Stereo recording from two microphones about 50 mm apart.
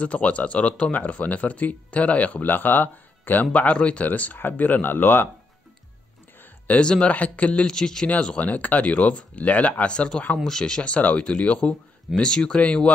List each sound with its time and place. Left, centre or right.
0.0 s speech: left
3.5 s speech: left
6.7 s speech: left
8.1 s speech: left
10.8 s speech: left
12.2 s speech: centre